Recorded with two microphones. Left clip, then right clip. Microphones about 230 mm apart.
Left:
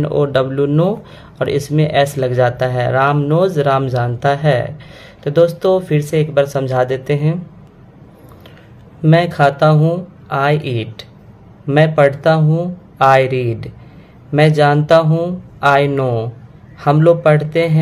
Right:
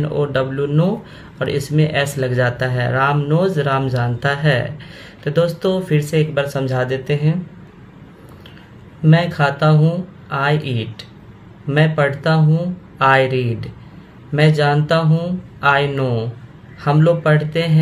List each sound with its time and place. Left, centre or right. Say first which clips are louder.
0.0 s speech: left 4 dB; left
9.0 s speech: left 5 dB; left